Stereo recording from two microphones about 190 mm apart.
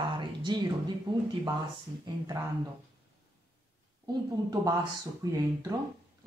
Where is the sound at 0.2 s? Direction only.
25° right (ahead or behind).